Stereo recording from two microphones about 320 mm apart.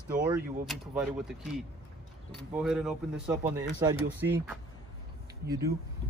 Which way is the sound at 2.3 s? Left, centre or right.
Centre.